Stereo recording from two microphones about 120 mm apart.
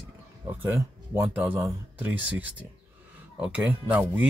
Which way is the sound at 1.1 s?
15° right (ahead or behind).